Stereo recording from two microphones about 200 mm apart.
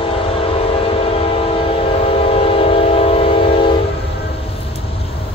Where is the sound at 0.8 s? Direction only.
30° left (ahead or behind).